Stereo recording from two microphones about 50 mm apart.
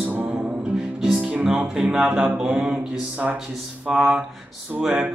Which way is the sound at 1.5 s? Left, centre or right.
Right.